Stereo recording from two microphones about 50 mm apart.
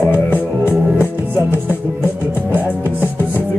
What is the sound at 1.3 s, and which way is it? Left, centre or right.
Music, right.